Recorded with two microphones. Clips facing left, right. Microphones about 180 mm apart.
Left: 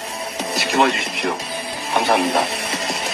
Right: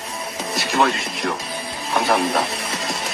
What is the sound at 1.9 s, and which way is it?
Speech, 25° left (ahead or behind).